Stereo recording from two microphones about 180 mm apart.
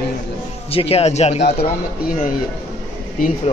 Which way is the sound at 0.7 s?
35° left (ahead or behind).